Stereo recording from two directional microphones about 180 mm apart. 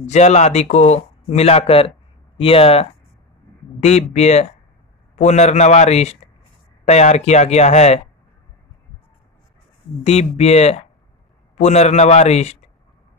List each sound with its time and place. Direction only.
0.0 s speech: 40° left (ahead or behind)
10.0 s speech: 35° left (ahead or behind)